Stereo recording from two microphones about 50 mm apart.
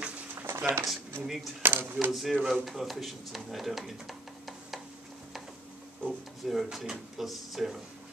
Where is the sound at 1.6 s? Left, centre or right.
Right.